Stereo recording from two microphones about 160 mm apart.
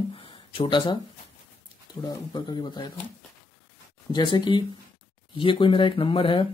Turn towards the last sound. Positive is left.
turn(degrees=35)  # may be behind; listen again after turning